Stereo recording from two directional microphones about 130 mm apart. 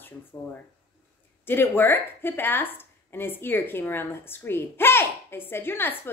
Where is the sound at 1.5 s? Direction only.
15° left (ahead or behind).